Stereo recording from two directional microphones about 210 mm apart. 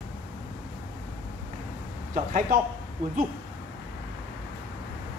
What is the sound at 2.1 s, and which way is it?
Speech, 35° right (ahead or behind).